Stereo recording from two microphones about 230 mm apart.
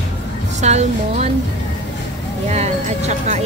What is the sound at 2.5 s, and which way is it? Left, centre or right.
Speech, right.